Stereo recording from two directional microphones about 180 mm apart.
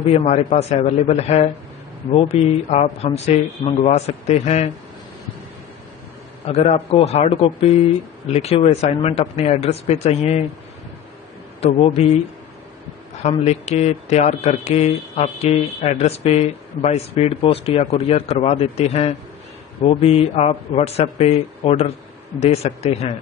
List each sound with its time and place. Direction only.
0.0 s speech: 35° left (ahead or behind)
6.4 s speech: 35° left (ahead or behind)
11.6 s speech: 35° left (ahead or behind)
13.2 s speech: 35° left (ahead or behind)